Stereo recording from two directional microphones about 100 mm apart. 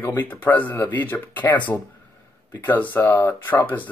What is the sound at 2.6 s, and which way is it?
Speech, 20° left (ahead or behind).